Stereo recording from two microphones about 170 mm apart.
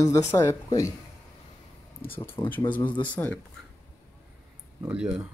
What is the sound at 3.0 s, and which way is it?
Speech, 10° left (ahead or behind).